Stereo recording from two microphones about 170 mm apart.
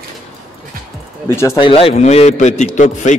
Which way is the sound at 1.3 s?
15° left (ahead or behind).